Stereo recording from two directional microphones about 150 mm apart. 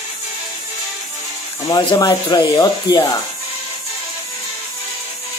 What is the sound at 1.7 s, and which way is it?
Speech, 30° left (ahead or behind).